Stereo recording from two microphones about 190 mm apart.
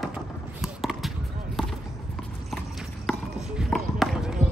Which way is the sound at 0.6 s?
Centre (ahead or behind).